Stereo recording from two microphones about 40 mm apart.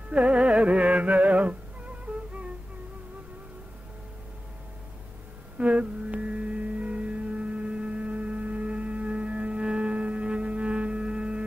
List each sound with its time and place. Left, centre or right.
0.1 s music: right
5.6 s music: right